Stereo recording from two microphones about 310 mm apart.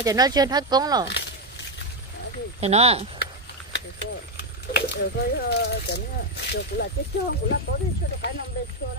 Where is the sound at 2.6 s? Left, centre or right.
Centre.